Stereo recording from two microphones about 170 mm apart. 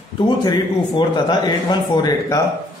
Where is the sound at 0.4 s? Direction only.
25° left (ahead or behind).